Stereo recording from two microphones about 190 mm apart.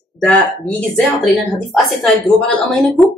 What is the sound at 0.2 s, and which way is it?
A woman's voice, 5° left (ahead or behind).